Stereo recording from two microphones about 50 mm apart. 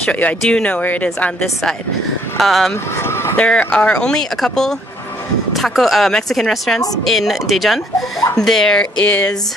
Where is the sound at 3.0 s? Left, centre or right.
Left.